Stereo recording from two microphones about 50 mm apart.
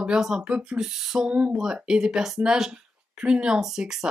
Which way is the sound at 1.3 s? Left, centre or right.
Right.